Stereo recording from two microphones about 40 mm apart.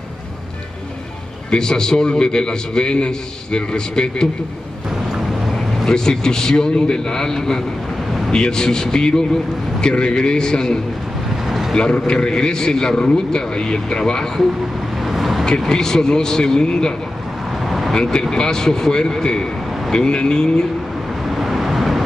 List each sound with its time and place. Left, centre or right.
1.5 s a man's voice: centre
5.9 s a man's voice: centre
11.4 s vehicle: centre
11.7 s a man's voice: left
15.0 s vehicle: centre
15.6 s a man's voice: centre
17.6 s vehicle: centre
17.9 s a man's voice: centre
21.4 s vehicle: centre